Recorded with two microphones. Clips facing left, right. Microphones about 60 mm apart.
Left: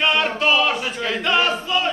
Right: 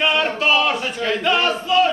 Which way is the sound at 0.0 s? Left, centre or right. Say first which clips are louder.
Even; centre.